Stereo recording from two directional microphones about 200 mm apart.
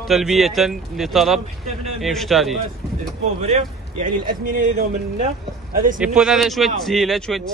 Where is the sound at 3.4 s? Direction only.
35° right (ahead or behind).